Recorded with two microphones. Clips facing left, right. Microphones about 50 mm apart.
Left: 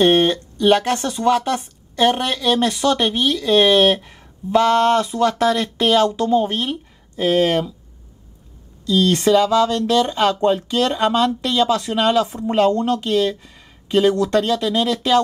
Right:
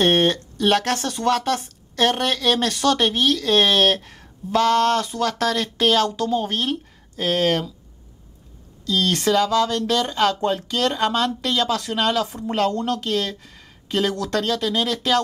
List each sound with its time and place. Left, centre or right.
0.0 s speech: centre
6.0 s speech: left
8.9 s speech: left